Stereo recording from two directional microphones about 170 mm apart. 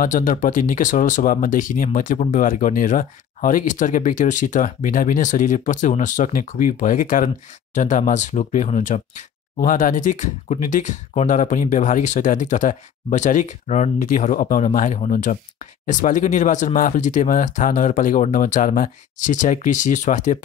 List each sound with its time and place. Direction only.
0.0 s speech: 50° left (ahead or behind)